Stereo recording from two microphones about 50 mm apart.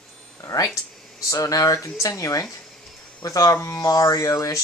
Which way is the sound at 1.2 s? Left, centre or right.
Left.